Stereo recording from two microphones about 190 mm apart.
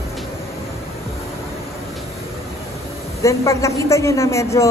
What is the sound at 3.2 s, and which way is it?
A man's voice, 15° left (ahead or behind).